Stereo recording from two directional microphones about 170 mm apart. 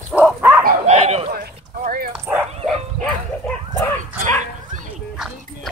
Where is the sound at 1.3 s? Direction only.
55° right (ahead or behind).